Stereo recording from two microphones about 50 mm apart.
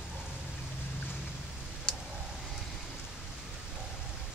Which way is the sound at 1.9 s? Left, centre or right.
Centre.